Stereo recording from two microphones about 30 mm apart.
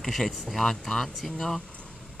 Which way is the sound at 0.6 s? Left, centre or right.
Centre.